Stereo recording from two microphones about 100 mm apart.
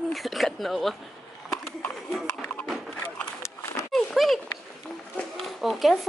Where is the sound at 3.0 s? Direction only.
10° left (ahead or behind).